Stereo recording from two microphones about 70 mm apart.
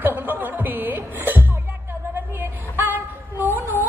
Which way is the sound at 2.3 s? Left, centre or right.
Right.